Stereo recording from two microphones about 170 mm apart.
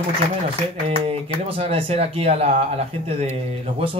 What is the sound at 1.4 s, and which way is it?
Speech, 35° right (ahead or behind).